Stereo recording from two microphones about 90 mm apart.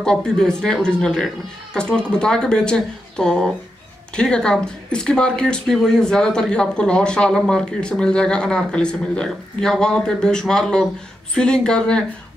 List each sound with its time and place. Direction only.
0.0 s speech: 5° left (ahead or behind)